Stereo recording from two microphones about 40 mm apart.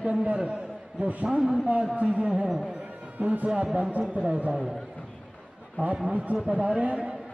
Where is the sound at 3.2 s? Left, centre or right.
Right.